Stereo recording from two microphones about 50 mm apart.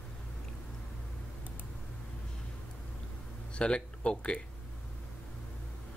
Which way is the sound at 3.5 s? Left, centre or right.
Left.